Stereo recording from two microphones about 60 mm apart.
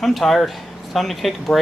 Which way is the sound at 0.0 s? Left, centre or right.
Centre.